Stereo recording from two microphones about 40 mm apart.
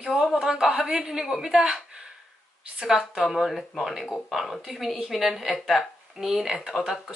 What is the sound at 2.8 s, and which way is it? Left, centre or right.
Speech, centre.